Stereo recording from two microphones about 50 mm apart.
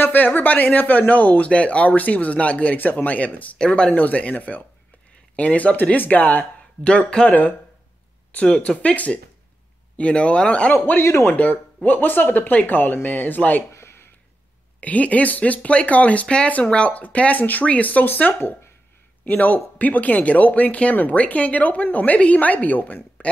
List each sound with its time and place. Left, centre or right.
0.0 s speech: left
3.5 s speech: centre
3.9 s speech: left
6.8 s speech: left
7.2 s speech: left
10.7 s speech: left
11.3 s speech: left
13.7 s a sound: left
14.8 s speech: left
23.2 s a sound: left